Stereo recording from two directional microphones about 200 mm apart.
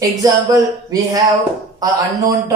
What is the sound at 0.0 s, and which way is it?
Speech, 15° right (ahead or behind).